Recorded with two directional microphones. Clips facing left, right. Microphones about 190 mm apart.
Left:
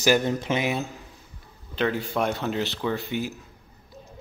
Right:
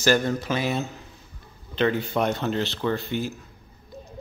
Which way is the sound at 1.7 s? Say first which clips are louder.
Right 2 dB; 5° left (ahead or behind).